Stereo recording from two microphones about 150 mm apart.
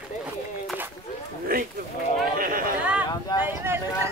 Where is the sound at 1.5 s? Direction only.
80° right.